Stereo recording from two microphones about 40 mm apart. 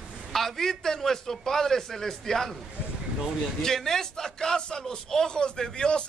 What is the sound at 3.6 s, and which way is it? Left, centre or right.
A man's voice, centre.